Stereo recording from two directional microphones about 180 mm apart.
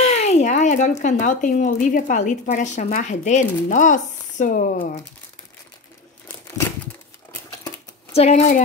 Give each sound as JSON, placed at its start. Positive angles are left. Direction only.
{"t": 0.0, "sound": "speech", "side_deg": 35}
{"t": 8.1, "sound": "speech", "side_deg": 35}